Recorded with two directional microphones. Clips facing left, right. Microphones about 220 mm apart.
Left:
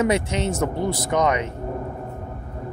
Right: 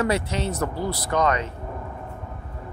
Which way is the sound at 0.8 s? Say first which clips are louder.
Left 3 dB; 50° left (ahead or behind).